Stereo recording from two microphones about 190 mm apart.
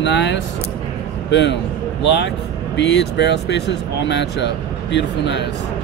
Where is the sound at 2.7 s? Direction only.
65° left (ahead or behind).